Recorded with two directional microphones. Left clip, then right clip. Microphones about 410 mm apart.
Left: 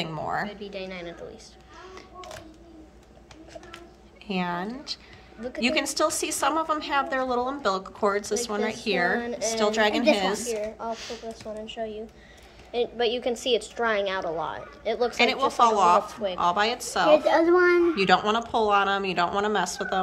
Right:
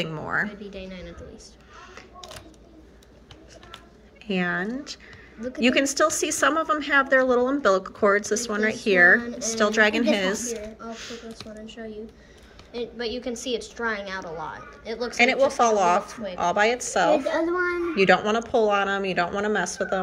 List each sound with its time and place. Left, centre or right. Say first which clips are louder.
0.0 s a woman's voice: right 2 dB; centre
4.3 s a woman's voice: right 3 dB; centre
17.3 s a child's voice: left 5 dB; left
17.9 s a woman's voice: right 2 dB; centre